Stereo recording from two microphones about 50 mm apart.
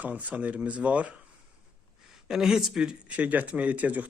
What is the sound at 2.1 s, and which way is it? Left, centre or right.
Speech, centre.